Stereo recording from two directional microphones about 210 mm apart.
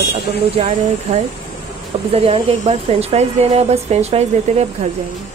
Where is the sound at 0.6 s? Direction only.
30° right (ahead or behind).